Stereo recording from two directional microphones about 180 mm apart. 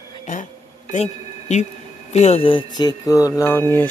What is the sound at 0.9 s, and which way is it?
Speech, 40° left (ahead or behind).